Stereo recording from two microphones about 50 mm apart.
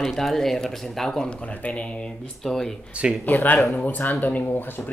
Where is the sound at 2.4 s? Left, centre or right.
Centre.